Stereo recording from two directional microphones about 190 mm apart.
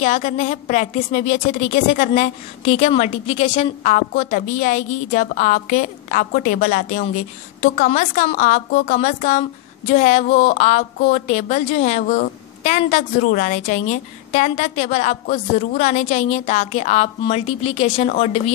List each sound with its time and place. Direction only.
0.0 s a woman's voice: 35° left (ahead or behind)